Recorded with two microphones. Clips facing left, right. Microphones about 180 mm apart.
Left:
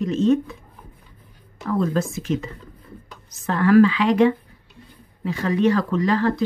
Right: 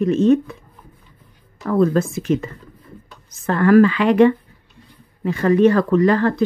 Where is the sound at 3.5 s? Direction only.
50° right (ahead or behind).